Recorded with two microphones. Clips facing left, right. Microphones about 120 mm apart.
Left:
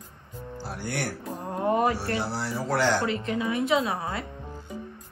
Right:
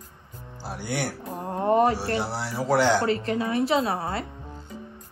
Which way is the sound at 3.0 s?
35° right (ahead or behind).